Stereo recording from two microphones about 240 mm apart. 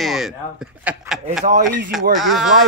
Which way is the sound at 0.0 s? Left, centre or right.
Centre.